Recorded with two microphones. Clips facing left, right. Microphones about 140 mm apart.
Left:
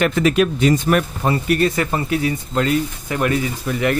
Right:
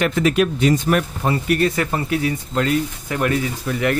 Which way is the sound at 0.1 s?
90° left.